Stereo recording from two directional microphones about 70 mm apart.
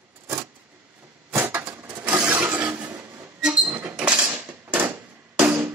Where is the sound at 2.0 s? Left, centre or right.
Right.